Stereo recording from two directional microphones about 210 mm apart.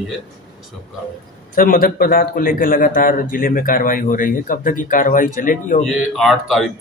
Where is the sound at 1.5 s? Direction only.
40° left (ahead or behind).